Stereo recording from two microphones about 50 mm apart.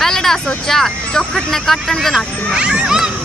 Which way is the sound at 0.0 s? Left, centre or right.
Centre.